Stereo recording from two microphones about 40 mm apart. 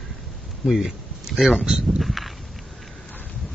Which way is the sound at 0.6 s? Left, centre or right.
Centre.